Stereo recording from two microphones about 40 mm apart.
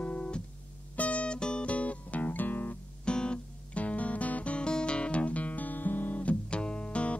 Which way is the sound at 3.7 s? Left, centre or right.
Left.